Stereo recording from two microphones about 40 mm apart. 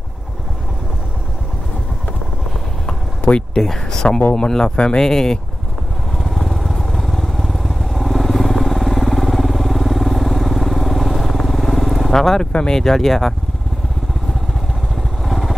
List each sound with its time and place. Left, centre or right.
3.5 s speech: centre
6.1 s vehicle: centre
12.1 s speech: centre
15.2 s motorcycle: centre